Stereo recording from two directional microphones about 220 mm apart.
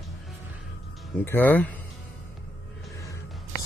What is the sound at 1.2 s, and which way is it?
Speech, 10° left (ahead or behind).